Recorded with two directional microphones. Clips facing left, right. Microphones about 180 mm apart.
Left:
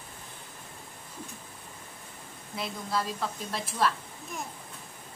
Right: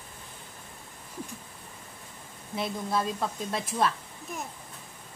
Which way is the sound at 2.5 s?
20° right (ahead or behind).